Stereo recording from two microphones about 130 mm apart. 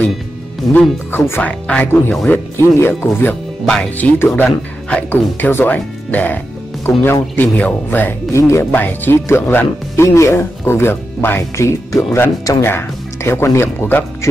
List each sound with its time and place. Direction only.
0.7 s speech: 15° left (ahead or behind)
3.6 s speech: 5° left (ahead or behind)